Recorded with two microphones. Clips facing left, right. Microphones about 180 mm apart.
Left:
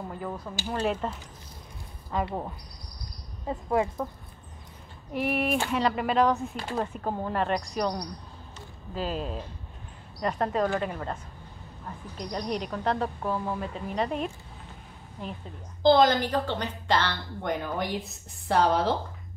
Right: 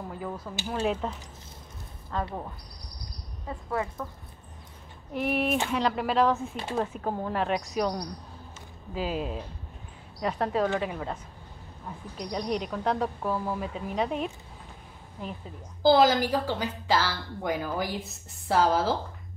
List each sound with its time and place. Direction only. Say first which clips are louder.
0.7 s a woman's voice: even; centre (ahead or behind)
2.0 s speech: left 3 dB; 15° left (ahead or behind)
5.1 s a woman's voice: even; centre (ahead or behind)
6.5 s speech: right 1 dB; 25° right (ahead or behind)
6.8 s a woman's voice: right 1 dB; centre (ahead or behind)
12.2 s a woman's voice: right 1 dB; centre (ahead or behind)